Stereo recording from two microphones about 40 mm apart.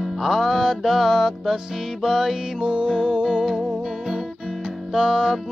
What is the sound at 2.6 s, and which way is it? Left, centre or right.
Music, right.